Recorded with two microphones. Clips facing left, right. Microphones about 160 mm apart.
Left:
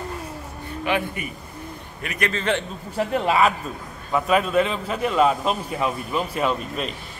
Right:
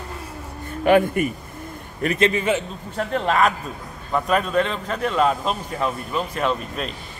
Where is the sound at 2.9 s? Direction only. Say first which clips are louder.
Left 1 dB; 10° left (ahead or behind).